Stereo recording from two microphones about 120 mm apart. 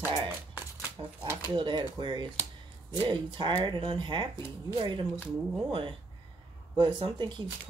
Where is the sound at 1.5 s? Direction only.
40° right (ahead or behind).